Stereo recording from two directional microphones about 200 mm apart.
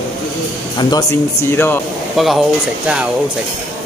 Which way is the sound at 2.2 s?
Centre (ahead or behind).